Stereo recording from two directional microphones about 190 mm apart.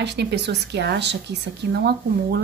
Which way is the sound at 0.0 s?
60° right (ahead or behind).